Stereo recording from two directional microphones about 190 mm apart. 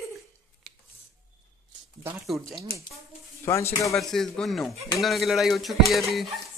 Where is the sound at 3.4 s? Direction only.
15° left (ahead or behind).